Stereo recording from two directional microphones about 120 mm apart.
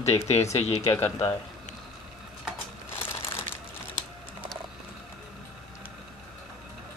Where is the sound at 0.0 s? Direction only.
65° left (ahead or behind).